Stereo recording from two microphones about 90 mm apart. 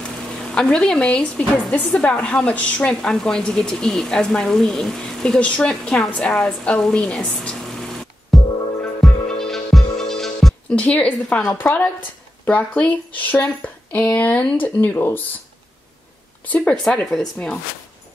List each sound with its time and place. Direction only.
0.4 s speech: 10° left (ahead or behind)
9.0 s music: 5° left (ahead or behind)
10.8 s a woman's voice: 15° left (ahead or behind)
16.5 s speech: 15° left (ahead or behind)